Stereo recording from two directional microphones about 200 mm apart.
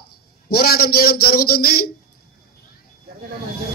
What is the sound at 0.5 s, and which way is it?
A man's voice, 50° left (ahead or behind).